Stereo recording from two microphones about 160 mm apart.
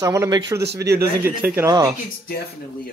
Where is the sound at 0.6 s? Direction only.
90° right.